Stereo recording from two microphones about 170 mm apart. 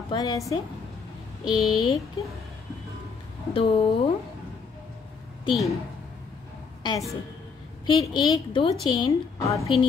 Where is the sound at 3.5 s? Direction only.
35° left (ahead or behind).